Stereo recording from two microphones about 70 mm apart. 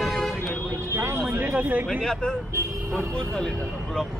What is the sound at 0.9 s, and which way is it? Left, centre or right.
Speech, right.